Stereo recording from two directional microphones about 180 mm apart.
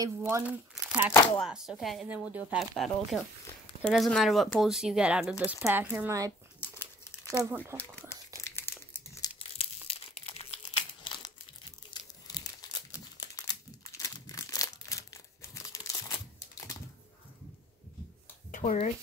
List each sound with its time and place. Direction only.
0.0 s speech: 15° right (ahead or behind)
0.8 s crumpling: 10° right (ahead or behind)
1.4 s speech: centre (ahead or behind)
6.6 s crumpling: 15° left (ahead or behind)
7.4 s speech: 15° right (ahead or behind)
8.1 s crumpling: 15° left (ahead or behind)
9.4 s crumpling: 30° left (ahead or behind)
11.9 s crumpling: 25° left (ahead or behind)
13.9 s crumpling: 20° left (ahead or behind)
18.5 s a sound: 40° left (ahead or behind)